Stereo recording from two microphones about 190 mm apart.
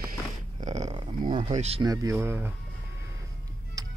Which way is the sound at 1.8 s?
20° right (ahead or behind).